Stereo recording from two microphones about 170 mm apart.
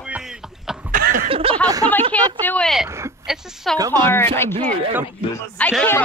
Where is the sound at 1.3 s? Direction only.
35° right (ahead or behind).